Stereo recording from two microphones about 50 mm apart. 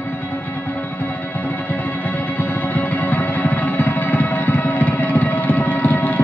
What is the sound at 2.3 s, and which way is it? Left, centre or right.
Music, left.